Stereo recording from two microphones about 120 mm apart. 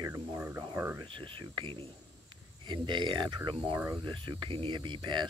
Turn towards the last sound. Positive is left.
turn(degrees=-40)  # may be behind; listen again after turning